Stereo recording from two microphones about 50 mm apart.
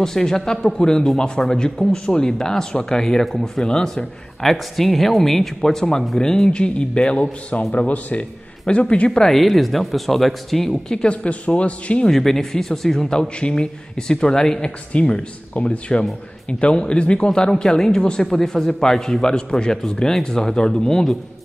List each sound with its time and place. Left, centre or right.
0.0 s speech: centre; by 9.2 s left
9.2 s speech: centre; by 12.1 s left
12.1 s speech: centre